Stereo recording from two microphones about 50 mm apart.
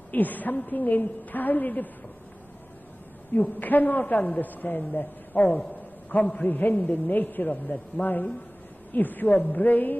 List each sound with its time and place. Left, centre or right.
0.1 s a man's voice: left
3.3 s a man's voice: left